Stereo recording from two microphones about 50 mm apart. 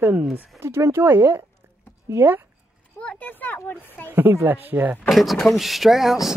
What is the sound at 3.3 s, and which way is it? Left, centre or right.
Speech, left.